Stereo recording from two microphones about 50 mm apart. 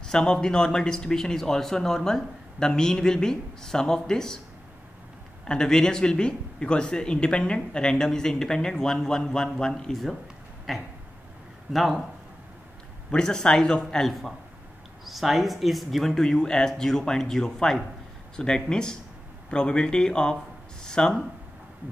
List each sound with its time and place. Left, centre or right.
0.0 s speech: centre
5.5 s speech: centre
10.7 s speech: centre
13.1 s speech: centre
15.0 s speech: centre
16.2 s speech: centre